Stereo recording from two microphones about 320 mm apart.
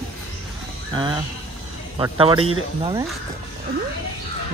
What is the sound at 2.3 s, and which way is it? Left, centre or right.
Speech, right.